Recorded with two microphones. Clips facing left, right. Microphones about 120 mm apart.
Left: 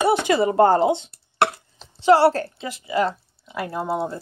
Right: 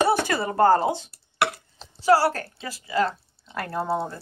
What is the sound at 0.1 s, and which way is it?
Speech, 20° left (ahead or behind).